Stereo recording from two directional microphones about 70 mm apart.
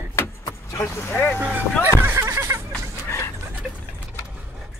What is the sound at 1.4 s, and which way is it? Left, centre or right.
Speech, right.